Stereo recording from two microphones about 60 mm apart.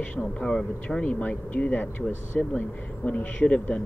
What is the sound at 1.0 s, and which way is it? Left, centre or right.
Speech, left.